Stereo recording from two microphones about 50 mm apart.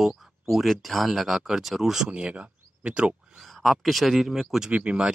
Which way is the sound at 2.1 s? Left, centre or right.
Right.